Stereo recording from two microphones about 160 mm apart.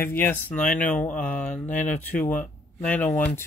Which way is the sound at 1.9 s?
50° left (ahead or behind).